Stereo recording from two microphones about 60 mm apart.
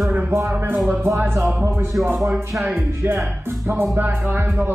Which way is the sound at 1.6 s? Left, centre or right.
Right.